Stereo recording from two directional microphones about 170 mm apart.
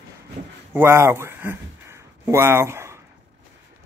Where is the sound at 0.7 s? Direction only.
15° right (ahead or behind).